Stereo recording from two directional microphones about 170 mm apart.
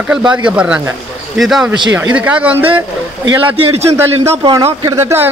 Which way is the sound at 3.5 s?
35° right (ahead or behind).